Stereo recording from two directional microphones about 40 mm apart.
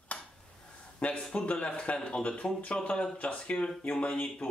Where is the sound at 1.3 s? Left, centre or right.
Left.